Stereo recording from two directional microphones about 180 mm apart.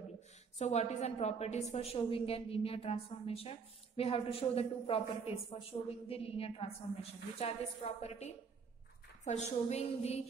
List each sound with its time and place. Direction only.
0.6 s a woman's voice: 40° left (ahead or behind)